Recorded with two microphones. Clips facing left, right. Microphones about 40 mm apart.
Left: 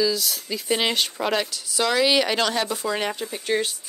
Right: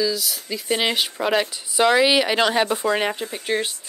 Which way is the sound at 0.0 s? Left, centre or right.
Centre.